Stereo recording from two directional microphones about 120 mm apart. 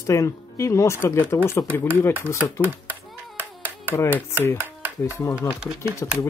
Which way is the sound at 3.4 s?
15° right (ahead or behind).